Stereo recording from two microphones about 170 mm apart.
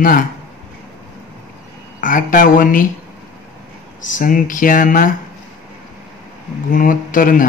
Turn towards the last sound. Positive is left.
turn(degrees=55)  # may be behind; listen again after turning